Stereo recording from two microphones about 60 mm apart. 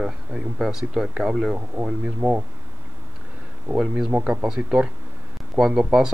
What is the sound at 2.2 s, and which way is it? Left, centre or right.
Speech, right.